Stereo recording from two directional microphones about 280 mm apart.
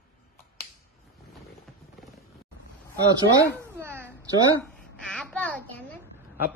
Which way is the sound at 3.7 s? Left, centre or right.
Centre.